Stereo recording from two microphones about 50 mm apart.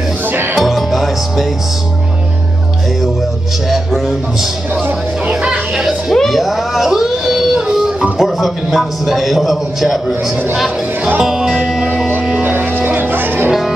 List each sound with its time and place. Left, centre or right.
0.6 s music: centre
3.7 s a man's voice: centre
5.8 s a man's voice: centre
11.1 s music: centre
12.4 s music: right